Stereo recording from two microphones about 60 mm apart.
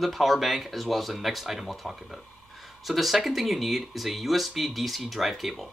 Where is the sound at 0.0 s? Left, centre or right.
Centre.